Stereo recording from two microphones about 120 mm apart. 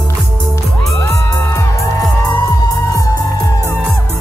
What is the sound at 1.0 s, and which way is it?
Music, 25° left (ahead or behind).